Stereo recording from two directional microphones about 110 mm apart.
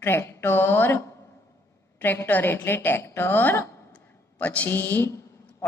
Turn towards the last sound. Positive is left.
turn(degrees=25)  # may be behind; listen again after turning